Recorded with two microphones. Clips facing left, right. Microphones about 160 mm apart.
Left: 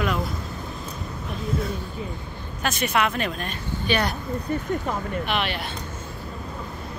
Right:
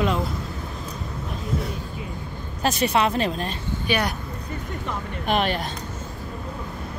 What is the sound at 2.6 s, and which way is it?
Speech, 35° right (ahead or behind).